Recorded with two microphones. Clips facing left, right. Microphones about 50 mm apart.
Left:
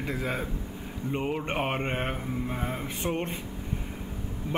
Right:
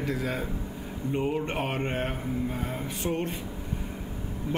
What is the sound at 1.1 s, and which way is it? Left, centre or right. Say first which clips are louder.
Mantra: right 1 dB; left.